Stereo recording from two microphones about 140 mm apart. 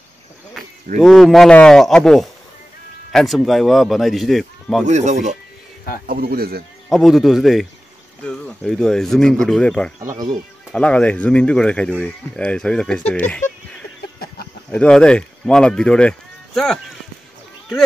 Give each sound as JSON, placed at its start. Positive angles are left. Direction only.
{"t": 0.9, "sound": "a man's voice", "side_deg": 0}
{"t": 4.8, "sound": "speech", "side_deg": -55}
{"t": 6.0, "sound": "speech", "side_deg": -90}
{"t": 6.9, "sound": "a man's voice", "side_deg": 0}
{"t": 14.7, "sound": "speech", "side_deg": 5}